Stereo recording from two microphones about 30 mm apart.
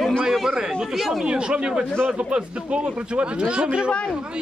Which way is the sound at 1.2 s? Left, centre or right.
Right.